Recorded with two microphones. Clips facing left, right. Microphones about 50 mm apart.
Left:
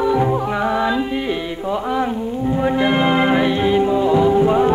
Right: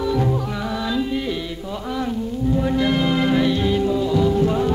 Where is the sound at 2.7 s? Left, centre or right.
Left.